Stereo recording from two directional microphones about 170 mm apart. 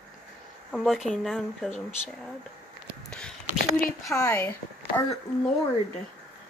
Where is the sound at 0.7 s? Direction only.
Centre (ahead or behind).